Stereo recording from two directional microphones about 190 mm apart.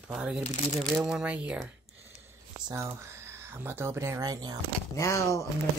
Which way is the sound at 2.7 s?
15° right (ahead or behind).